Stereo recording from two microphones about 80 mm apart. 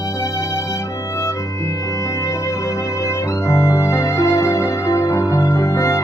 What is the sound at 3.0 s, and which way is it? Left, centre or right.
Music, left.